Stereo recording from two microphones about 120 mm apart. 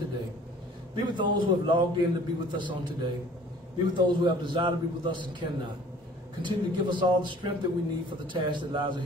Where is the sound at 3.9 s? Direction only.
40° right (ahead or behind).